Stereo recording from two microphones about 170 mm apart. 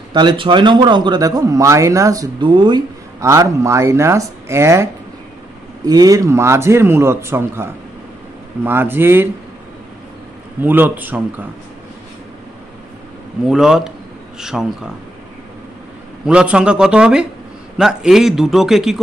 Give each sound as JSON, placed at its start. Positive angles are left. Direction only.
{"t": 0.1, "sound": "speech", "side_deg": -25}
{"t": 5.9, "sound": "a man's voice", "side_deg": -20}
{"t": 10.6, "sound": "a man's voice", "side_deg": -10}
{"t": 13.5, "sound": "a man's voice", "side_deg": 0}
{"t": 16.3, "sound": "a man's voice", "side_deg": -5}